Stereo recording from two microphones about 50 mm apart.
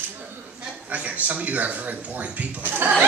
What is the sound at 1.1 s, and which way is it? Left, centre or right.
A man's voice, right.